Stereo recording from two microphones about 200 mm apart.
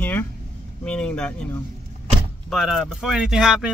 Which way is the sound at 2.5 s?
Centre (ahead or behind).